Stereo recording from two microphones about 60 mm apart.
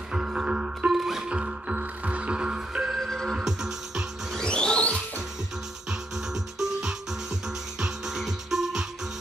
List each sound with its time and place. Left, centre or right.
0.1 s music: centre
0.9 s music: centre
1.3 s music: centre
3.0 s music: centre
3.3 s music: centre
4.4 s music: centre
5.9 s music: centre